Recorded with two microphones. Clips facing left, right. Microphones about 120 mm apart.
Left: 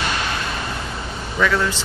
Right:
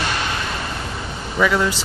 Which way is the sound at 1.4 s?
10° right (ahead or behind).